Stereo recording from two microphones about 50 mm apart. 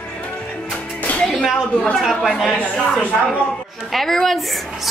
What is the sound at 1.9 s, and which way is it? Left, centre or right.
Speech, centre.